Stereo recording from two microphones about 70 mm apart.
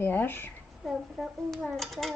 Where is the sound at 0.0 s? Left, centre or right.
Left.